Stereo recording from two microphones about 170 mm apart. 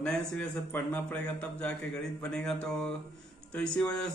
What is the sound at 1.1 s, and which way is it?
Speech, 10° left (ahead or behind).